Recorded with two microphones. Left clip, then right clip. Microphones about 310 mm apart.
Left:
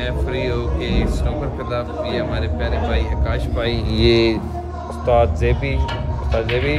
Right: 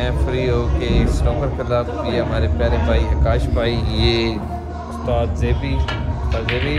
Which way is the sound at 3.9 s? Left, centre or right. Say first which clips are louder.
Left 4 dB; left.